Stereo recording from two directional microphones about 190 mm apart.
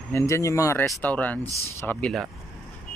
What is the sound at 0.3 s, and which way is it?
Speech, 15° left (ahead or behind).